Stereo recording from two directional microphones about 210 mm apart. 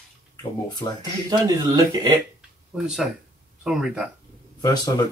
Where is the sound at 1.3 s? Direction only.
20° right (ahead or behind).